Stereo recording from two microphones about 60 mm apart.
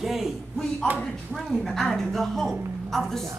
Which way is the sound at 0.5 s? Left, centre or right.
Centre.